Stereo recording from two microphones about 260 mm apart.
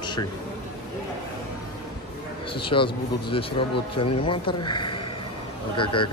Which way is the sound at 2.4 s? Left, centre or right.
Centre.